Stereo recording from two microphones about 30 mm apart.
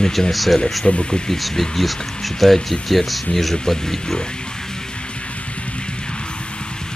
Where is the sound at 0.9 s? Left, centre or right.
Left.